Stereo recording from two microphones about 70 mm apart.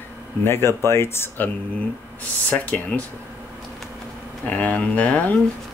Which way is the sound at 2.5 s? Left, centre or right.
Left.